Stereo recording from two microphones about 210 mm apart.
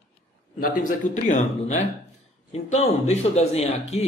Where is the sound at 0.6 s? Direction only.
35° left (ahead or behind).